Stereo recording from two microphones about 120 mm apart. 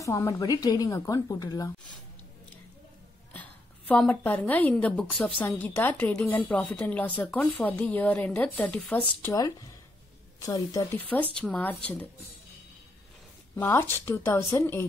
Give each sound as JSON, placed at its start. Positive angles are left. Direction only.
{"t": 0.0, "sound": "a woman's voice", "side_deg": 25}
{"t": 3.3, "sound": "a sound", "side_deg": 15}
{"t": 4.0, "sound": "speech", "side_deg": 10}
{"t": 10.4, "sound": "a woman's voice", "side_deg": 30}
{"t": 11.0, "sound": "speech", "side_deg": 15}
{"t": 13.6, "sound": "a woman's voice", "side_deg": 20}